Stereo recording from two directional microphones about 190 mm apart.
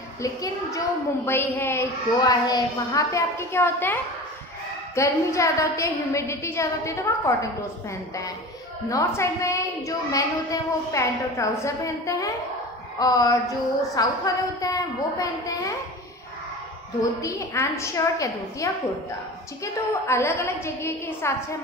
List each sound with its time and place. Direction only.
0.2 s a woman's voice: 15° left (ahead or behind)
8.8 s a woman's voice: 15° left (ahead or behind)
13.0 s a sound: 20° left (ahead or behind)
13.9 s a woman's voice: 20° left (ahead or behind)
17.2 s a woman's voice: 15° left (ahead or behind)